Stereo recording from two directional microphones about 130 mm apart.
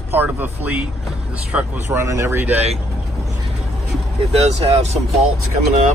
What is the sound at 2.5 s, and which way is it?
Speech, 55° right (ahead or behind).